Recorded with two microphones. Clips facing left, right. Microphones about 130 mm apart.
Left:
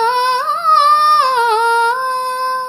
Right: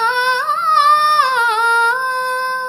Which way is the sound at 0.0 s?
25° left (ahead or behind).